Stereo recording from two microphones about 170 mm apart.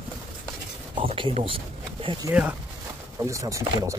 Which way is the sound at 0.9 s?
30° right (ahead or behind).